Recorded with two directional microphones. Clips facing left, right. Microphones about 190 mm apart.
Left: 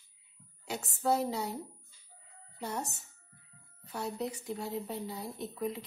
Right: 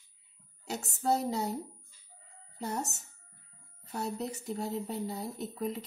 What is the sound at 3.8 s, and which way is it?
A woman's voice, 45° right (ahead or behind).